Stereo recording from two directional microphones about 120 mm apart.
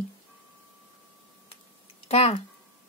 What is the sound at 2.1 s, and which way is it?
Speech, 60° left (ahead or behind).